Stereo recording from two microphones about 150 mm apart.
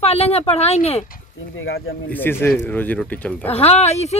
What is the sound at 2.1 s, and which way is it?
Speech, 15° left (ahead or behind).